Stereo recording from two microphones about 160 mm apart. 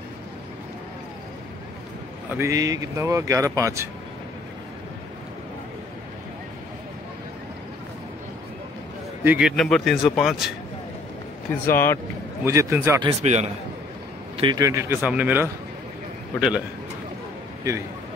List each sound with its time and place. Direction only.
2.3 s speech: 20° right (ahead or behind)
9.2 s a man's voice: 10° right (ahead or behind)
9.6 s speech: centre (ahead or behind)
11.7 s speech: 15° left (ahead or behind)
12.4 s speech: 20° right (ahead or behind)
13.2 s a man's voice: 45° right (ahead or behind)
14.3 s speech: 30° right (ahead or behind); by 16.6 s 5° right (ahead or behind)